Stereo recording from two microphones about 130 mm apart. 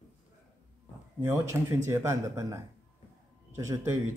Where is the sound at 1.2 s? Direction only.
20° right (ahead or behind).